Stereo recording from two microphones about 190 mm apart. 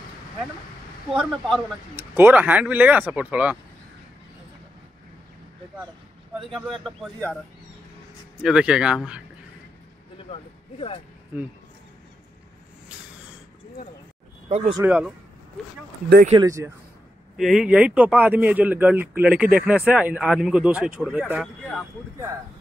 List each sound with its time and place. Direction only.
1.1 s a man's voice: centre (ahead or behind)
8.4 s speech: 5° right (ahead or behind)
10.1 s a sound: 30° left (ahead or behind)
11.3 s a man's voice: 10° right (ahead or behind)
14.5 s speech: 30° right (ahead or behind)
14.8 s a man's voice: 5° right (ahead or behind)
16.3 s a man's voice: 20° right (ahead or behind)
17.4 s a man's voice: 5° right (ahead or behind)